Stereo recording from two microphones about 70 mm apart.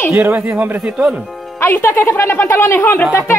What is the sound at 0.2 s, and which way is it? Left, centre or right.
Speech, right.